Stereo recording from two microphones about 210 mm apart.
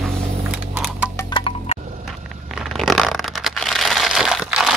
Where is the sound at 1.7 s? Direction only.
35° right (ahead or behind).